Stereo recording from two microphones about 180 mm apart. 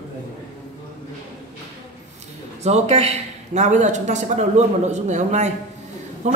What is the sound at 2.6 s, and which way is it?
A man's voice, 35° right (ahead or behind).